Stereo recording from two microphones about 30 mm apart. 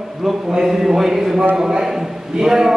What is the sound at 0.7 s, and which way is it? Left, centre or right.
A man's voice, centre.